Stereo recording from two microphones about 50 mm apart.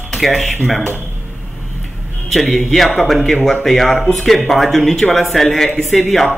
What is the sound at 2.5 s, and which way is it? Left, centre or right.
Speech, centre.